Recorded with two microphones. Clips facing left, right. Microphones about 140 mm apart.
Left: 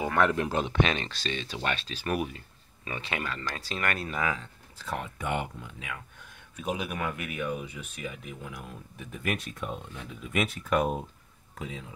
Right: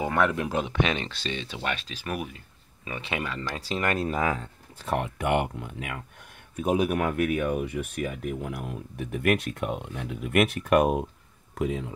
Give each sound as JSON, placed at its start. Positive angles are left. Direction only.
{"t": 0.0, "sound": "a sound", "side_deg": -15}
{"t": 0.3, "sound": "speech", "side_deg": -5}
{"t": 1.2, "sound": "speech", "side_deg": -20}
{"t": 1.6, "sound": "speech", "side_deg": -10}
{"t": 3.0, "sound": "speech", "side_deg": -15}
{"t": 4.0, "sound": "speech", "side_deg": -40}
{"t": 11.5, "sound": "speech", "side_deg": -60}